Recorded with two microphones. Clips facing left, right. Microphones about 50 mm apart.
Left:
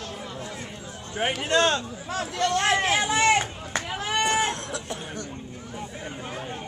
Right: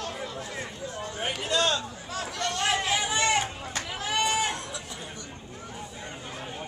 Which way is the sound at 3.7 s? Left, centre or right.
Left.